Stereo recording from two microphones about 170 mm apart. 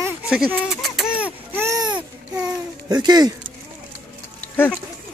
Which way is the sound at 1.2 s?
10° right (ahead or behind).